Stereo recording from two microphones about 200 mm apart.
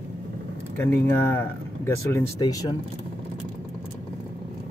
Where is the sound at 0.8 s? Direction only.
10° left (ahead or behind).